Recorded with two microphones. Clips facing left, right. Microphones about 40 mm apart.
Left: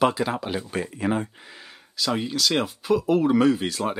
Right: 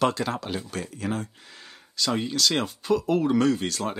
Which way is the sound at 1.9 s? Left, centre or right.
Centre.